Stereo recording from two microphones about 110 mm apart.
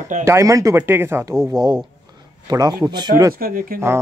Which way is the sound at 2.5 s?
35° right (ahead or behind).